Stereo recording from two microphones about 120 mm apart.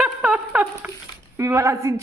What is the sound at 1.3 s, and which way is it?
Speech, 25° right (ahead or behind).